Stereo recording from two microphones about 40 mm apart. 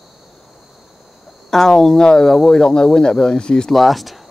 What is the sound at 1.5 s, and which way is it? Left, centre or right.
Speech, centre.